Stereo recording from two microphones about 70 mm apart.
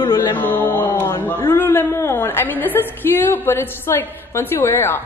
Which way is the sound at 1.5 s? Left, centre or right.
Left.